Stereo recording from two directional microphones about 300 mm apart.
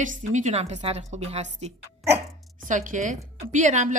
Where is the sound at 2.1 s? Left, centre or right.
Centre.